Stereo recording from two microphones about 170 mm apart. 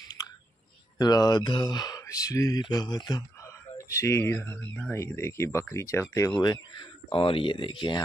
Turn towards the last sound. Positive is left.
turn(degrees=25)  # may be behind; listen again after turning